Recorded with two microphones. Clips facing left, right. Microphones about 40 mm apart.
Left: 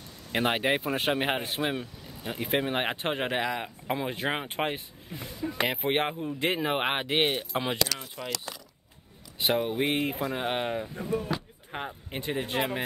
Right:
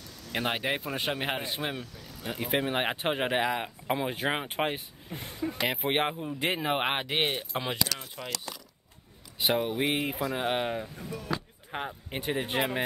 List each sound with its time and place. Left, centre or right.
0.0 s speech: left
1.7 s vehicle: left
2.2 s speech: centre
5.1 s speech: right
5.7 s speech: centre
8.2 s speech: centre
9.4 s speech: centre
11.0 s speech: left
11.7 s speech: centre
12.4 s speech: right